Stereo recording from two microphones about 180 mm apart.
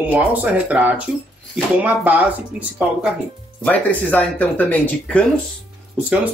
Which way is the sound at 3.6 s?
10° left (ahead or behind).